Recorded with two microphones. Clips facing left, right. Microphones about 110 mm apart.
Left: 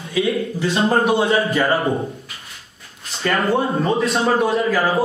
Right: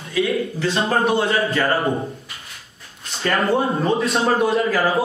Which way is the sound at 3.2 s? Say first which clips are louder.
Even; centre (ahead or behind).